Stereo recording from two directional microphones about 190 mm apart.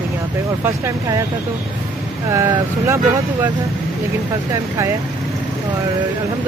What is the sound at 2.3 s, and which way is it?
Speech, 15° right (ahead or behind).